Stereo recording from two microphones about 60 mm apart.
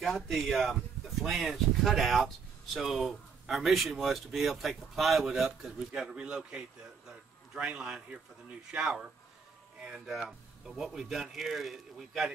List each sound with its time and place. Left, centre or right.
0.0 s a man's voice: centre